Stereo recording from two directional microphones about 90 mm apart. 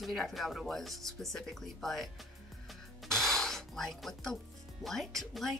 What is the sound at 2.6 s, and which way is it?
Music, 5° left (ahead or behind).